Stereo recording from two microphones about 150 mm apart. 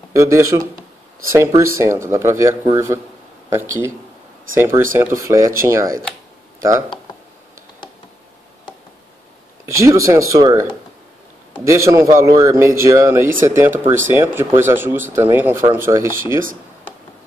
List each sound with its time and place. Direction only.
0.1 s a man's voice: 20° right (ahead or behind)
9.7 s a man's voice: 20° right (ahead or behind)